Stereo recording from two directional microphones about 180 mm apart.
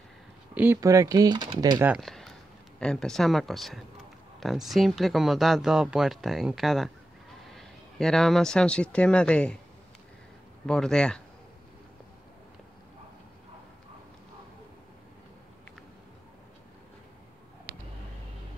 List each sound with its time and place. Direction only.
0.6 s speech: 15° right (ahead or behind)
1.9 s a sound: centre (ahead or behind)
2.8 s speech: 5° left (ahead or behind)
10.7 s speech: 5° left (ahead or behind)
17.7 s vehicle: 55° right (ahead or behind)